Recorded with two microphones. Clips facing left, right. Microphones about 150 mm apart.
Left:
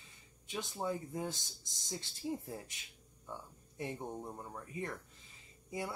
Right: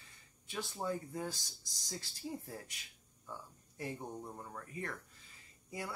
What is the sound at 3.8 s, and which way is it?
Speech, 20° left (ahead or behind).